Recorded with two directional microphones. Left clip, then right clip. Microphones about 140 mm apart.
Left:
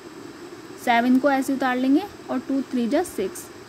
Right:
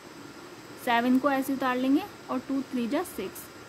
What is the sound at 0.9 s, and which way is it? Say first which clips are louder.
Speech: left 6 dB; 20° left (ahead or behind).